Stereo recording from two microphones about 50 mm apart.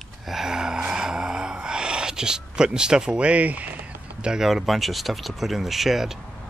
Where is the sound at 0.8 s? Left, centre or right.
Centre; by 3.9 s right.